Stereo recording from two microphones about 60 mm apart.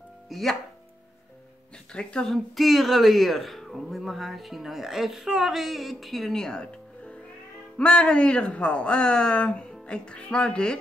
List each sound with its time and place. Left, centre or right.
0.3 s a woman's voice: centre
1.9 s a woman's voice: centre